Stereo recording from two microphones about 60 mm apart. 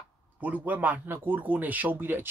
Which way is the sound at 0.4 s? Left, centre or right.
Right.